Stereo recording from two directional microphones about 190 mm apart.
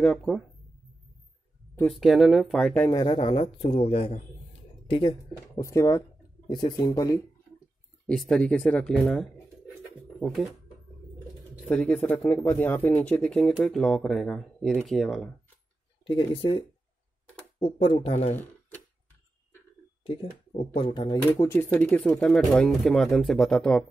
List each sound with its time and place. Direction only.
0.0 s speech: 5° left (ahead or behind)
1.9 s speech: centre (ahead or behind)
2.9 s a man's voice: 25° left (ahead or behind)
5.6 s speech: 15° left (ahead or behind)
8.1 s speech: 5° left (ahead or behind)
11.6 s speech: 10° left (ahead or behind)
16.1 s speech: 30° left (ahead or behind)
17.6 s speech: 30° left (ahead or behind)
20.0 s speech: 30° left (ahead or behind); by 23.9 s 5° left (ahead or behind)